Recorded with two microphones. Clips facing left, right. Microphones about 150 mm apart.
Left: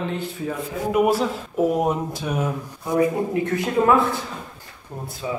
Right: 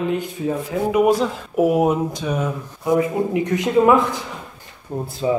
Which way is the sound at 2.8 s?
15° right (ahead or behind).